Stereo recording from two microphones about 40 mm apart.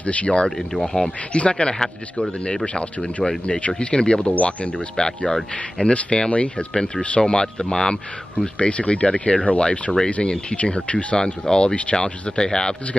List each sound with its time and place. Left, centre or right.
0.0 s speech: left
0.6 s speech: centre
1.3 s speech: left
2.4 s speech: left
4.9 s speech: centre
8.5 s speech: left
11.1 s speech: centre